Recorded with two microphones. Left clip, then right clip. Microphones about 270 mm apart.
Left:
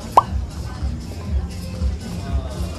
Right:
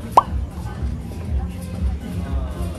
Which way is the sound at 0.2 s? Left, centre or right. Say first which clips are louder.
Even; centre.